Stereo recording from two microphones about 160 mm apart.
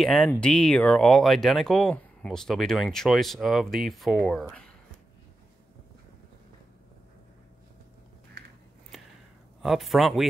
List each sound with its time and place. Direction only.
0.0 s speech: centre (ahead or behind)
8.4 s biting: 90° right
9.6 s speech: centre (ahead or behind)